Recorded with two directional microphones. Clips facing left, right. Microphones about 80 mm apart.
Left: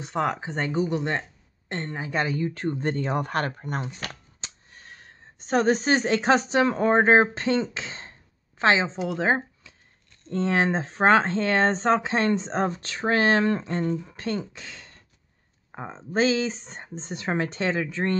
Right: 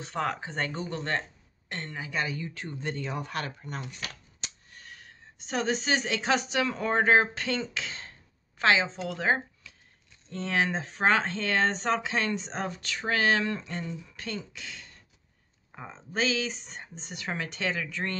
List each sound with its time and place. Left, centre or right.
0.0 s speech: centre
1.7 s speech: left
4.0 s a woman's voice: left
10.3 s speech: left